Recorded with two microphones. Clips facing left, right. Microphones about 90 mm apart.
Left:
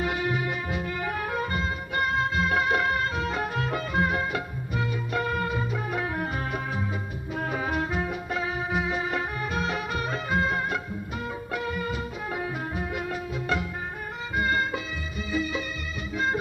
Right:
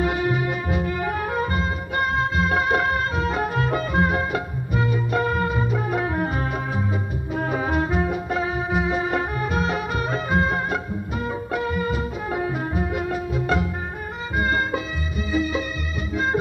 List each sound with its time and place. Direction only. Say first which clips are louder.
0.0 s music: right 5 dB; 35° right (ahead or behind)